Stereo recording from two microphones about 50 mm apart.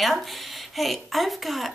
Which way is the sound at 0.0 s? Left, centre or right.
Centre.